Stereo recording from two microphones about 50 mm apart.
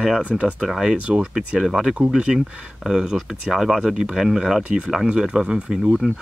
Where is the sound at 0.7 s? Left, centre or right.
Centre.